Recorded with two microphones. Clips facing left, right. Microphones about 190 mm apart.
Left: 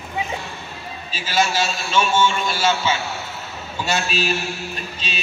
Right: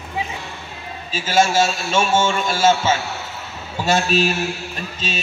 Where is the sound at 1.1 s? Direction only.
45° right (ahead or behind).